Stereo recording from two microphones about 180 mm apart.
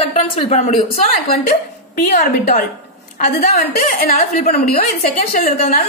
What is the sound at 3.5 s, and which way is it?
A woman's voice, 60° left (ahead or behind).